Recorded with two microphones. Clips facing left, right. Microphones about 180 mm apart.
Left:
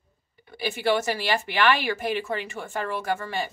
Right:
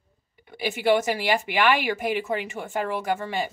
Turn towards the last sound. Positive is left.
turn(degrees=-15)  # may be behind; listen again after turning